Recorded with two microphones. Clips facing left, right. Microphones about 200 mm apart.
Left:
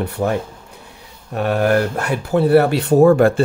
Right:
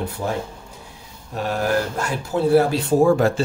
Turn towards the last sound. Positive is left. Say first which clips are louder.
# left 5 dB
turn(degrees=60)  # may be behind; listen again after turning